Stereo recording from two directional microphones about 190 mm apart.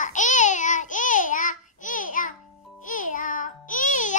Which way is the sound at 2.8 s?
45° left (ahead or behind).